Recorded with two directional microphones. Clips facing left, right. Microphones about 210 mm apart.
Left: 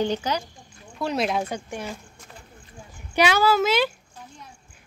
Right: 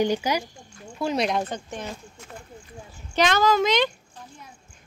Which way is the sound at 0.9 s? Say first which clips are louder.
Even; centre (ahead or behind).